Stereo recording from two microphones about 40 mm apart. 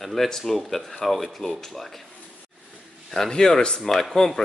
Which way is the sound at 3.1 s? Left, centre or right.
Centre.